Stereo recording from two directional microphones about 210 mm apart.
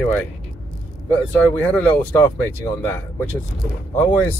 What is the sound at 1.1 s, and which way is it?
Speech, 10° left (ahead or behind).